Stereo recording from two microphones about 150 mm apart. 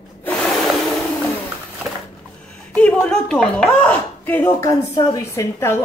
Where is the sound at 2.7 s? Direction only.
5° left (ahead or behind).